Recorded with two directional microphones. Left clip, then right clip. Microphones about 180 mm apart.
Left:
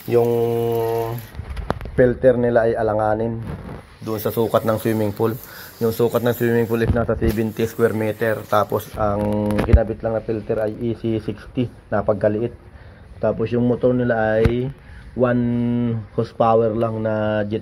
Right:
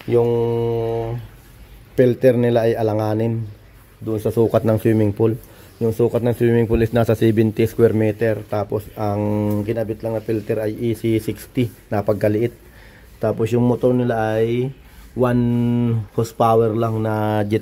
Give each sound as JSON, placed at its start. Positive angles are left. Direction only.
{"t": 0.1, "sound": "mantra", "side_deg": -15}
{"t": 2.0, "sound": "a man's voice", "side_deg": -50}
{"t": 5.8, "sound": "speech", "side_deg": -20}
{"t": 6.0, "sound": "speech", "side_deg": -30}
{"t": 6.5, "sound": "a man's voice", "side_deg": -40}
{"t": 8.5, "sound": "speech", "side_deg": -25}
{"t": 9.0, "sound": "speech", "side_deg": -35}
{"t": 9.8, "sound": "speech", "side_deg": -20}
{"t": 10.2, "sound": "speech", "side_deg": -40}
{"t": 13.2, "sound": "speech", "side_deg": -35}
{"t": 15.4, "sound": "speech", "side_deg": -45}